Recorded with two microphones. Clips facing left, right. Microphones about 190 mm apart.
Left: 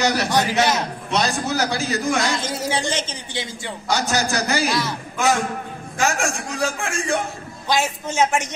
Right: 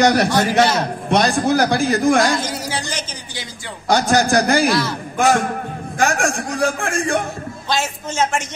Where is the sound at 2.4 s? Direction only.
25° left (ahead or behind).